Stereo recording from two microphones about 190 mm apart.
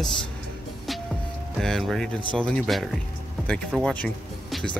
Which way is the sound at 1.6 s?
Centre (ahead or behind).